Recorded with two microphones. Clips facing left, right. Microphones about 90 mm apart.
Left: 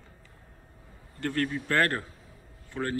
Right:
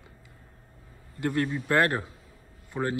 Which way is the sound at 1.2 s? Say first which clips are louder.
Right 2 dB; 15° right (ahead or behind).